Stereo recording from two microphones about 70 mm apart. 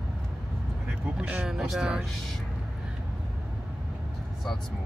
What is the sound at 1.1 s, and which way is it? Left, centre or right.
Speech, centre.